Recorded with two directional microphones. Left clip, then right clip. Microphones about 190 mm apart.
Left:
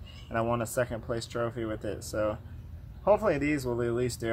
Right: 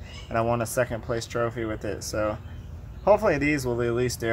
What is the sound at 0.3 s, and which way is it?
Speech, centre (ahead or behind).